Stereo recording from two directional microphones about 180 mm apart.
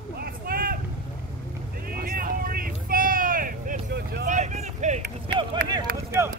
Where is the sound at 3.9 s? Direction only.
65° right (ahead or behind).